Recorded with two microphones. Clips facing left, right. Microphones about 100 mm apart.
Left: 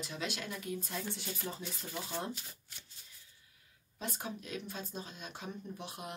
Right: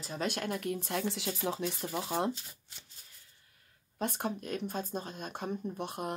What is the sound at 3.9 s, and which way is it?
Speech, 55° right (ahead or behind).